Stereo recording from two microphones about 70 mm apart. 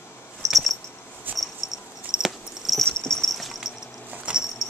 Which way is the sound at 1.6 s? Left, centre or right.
Left.